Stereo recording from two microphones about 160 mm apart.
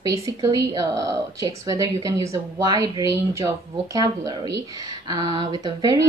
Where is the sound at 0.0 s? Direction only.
20° right (ahead or behind).